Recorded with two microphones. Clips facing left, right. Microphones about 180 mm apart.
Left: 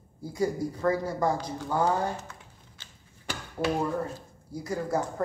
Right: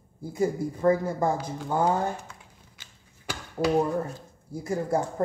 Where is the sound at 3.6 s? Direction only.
20° right (ahead or behind).